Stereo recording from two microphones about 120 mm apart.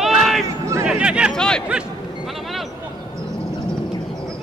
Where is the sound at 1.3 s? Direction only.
5° left (ahead or behind).